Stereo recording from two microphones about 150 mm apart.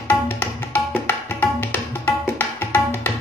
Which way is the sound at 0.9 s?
15° left (ahead or behind).